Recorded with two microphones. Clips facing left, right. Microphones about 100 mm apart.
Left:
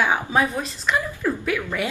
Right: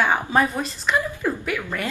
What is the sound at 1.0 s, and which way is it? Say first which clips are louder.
Speech: even; 15° right (ahead or behind).